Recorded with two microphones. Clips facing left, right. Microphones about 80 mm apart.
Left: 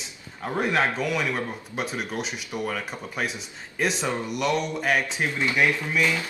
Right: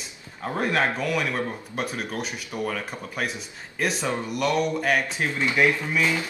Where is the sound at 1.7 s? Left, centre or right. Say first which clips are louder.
Left 3 dB; centre.